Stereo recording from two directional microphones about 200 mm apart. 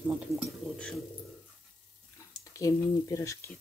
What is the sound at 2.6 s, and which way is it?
Speech, 15° left (ahead or behind).